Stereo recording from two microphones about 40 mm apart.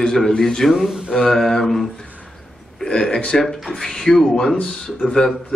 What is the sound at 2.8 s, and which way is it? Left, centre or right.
Speech, left.